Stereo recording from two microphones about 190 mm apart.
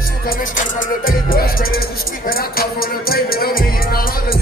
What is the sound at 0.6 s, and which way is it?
Music, 45° left (ahead or behind).